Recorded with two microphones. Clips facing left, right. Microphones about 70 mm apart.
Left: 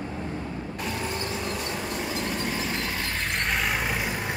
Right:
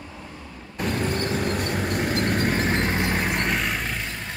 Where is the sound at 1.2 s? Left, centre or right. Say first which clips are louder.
Right 5 dB; right.